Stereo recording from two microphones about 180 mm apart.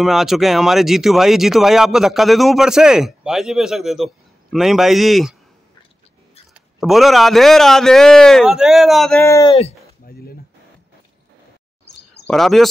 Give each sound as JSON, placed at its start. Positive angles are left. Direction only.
{"t": 0.0, "sound": "speech", "side_deg": 0}
{"t": 6.5, "sound": "speech", "side_deg": 0}
{"t": 9.2, "sound": "speech", "side_deg": 15}
{"t": 9.5, "sound": "speech", "side_deg": 35}
{"t": 10.0, "sound": "a sound", "side_deg": 55}
{"t": 12.3, "sound": "speech", "side_deg": 0}